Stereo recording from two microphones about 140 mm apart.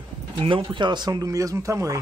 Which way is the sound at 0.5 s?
35° right (ahead or behind).